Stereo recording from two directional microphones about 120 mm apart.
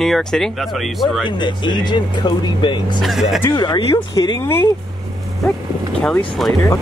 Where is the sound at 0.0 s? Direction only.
5° left (ahead or behind).